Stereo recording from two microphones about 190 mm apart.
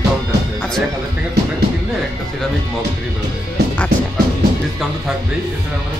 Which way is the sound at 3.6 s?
60° right (ahead or behind).